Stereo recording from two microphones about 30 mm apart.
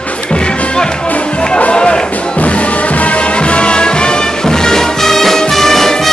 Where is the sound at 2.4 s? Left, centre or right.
Left.